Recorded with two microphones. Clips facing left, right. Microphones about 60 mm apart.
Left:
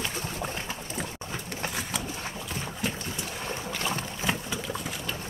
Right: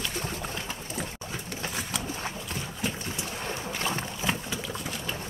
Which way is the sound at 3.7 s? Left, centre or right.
Right.